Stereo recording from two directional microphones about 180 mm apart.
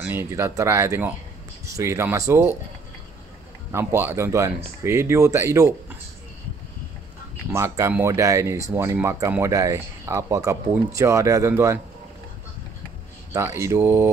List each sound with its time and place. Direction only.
0.0 s speech: 10° right (ahead or behind)
3.7 s speech: 15° right (ahead or behind)
7.5 s speech: 15° right (ahead or behind)
13.3 s speech: 15° right (ahead or behind)